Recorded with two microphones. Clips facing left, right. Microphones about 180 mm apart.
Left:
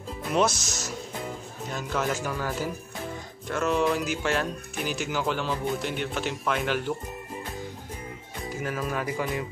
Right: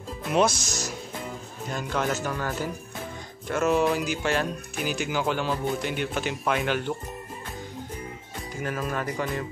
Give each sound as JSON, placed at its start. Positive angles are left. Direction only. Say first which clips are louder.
{"t": 0.3, "sound": "speech", "louder": "right 2 dB", "side_deg": 0}
{"t": 3.4, "sound": "speech", "louder": "right 2 dB", "side_deg": -5}
{"t": 8.6, "sound": "speech", "louder": "right 1 dB", "side_deg": 5}